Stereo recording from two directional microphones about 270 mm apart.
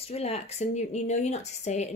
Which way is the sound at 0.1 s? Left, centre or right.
Left.